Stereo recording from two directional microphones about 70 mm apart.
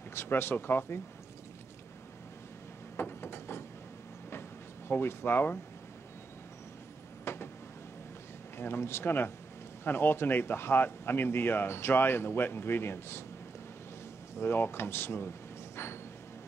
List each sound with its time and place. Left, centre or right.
0.1 s speech: left
3.0 s ratchet: left
4.3 s a sound: left
7.3 s a sound: left
8.5 s speech: left
14.4 s speech: left